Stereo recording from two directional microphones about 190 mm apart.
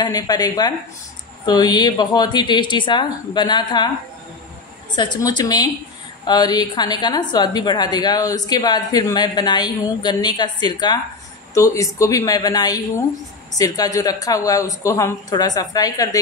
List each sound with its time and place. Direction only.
0.0 s a woman's voice: 20° left (ahead or behind)
4.9 s a woman's voice: 25° left (ahead or behind)